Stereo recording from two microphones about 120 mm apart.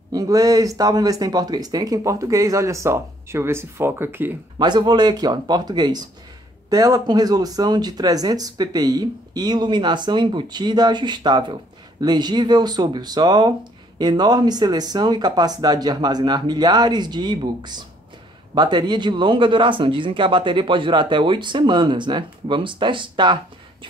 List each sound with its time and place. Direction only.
0.1 s speech: 30° right (ahead or behind)
4.6 s speech: 35° right (ahead or behind)